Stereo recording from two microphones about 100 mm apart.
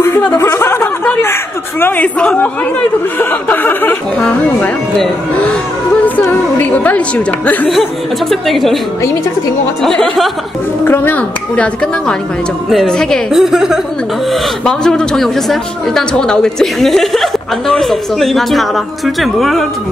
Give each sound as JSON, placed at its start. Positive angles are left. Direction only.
{"t": 0.4, "sound": "a sound", "side_deg": 25}
{"t": 1.8, "sound": "speech", "side_deg": 20}
{"t": 6.6, "sound": "speech", "side_deg": 15}
{"t": 8.3, "sound": "speech", "side_deg": 0}
{"t": 9.8, "sound": "speech", "side_deg": 5}
{"t": 10.9, "sound": "speech", "side_deg": 20}
{"t": 13.3, "sound": "speech", "side_deg": -5}